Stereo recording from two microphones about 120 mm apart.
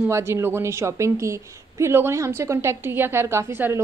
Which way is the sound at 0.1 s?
20° right (ahead or behind).